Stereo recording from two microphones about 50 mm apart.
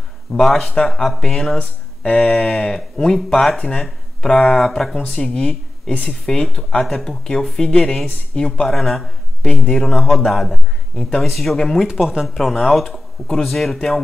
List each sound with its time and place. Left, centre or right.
0.3 s speech: centre
5.5 s speech: left
6.0 s speech: centre
9.9 s speech: centre
11.8 s speech: centre